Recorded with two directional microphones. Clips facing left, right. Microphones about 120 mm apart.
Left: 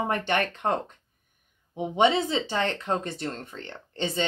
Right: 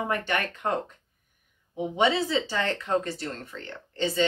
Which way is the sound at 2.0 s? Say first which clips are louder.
Left 2 dB; 20° left (ahead or behind).